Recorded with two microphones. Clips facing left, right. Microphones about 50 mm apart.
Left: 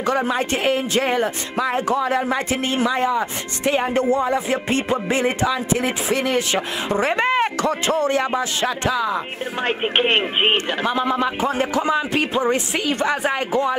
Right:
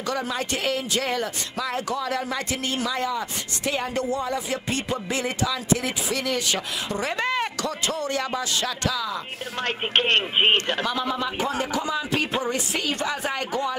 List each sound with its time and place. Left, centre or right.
0.0 s speech: left
9.6 s speech: centre
10.9 s speech: left